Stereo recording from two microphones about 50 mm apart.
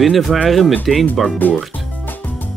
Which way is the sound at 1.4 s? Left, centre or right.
Left.